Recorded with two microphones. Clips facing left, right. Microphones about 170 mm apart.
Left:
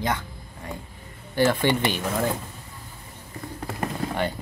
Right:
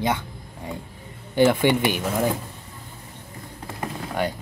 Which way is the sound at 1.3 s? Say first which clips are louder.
Right 3 dB; 15° right (ahead or behind).